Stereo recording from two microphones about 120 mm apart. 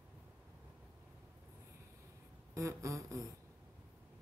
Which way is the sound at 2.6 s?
25° right (ahead or behind).